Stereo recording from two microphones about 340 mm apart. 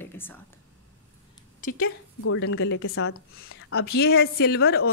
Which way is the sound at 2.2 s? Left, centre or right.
Left.